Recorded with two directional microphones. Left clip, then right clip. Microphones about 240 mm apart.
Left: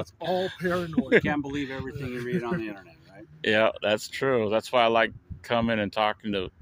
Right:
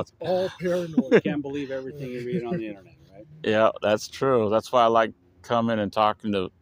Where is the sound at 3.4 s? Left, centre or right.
Centre.